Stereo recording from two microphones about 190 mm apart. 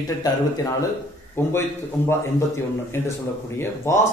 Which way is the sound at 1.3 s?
15° left (ahead or behind).